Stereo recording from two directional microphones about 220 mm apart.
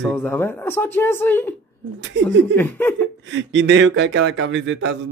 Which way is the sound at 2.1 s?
55° right (ahead or behind).